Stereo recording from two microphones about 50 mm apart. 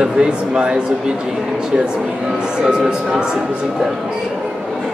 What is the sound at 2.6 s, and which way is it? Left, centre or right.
Speech, centre.